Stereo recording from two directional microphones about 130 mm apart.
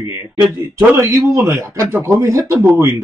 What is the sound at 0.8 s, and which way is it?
A man's voice, 20° right (ahead or behind).